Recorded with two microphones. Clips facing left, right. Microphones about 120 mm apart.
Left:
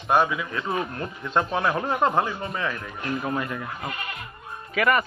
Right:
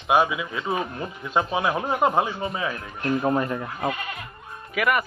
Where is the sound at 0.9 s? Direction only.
5° right (ahead or behind).